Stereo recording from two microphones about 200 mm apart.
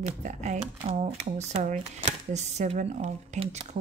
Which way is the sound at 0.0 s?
35° right (ahead or behind).